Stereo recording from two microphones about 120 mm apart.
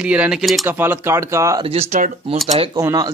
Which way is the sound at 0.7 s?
20° right (ahead or behind).